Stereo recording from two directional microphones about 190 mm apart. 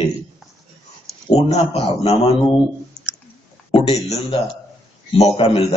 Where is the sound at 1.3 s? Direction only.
35° left (ahead or behind).